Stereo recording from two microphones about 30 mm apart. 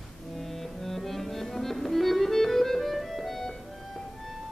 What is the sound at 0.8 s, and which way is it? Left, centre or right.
Music, centre.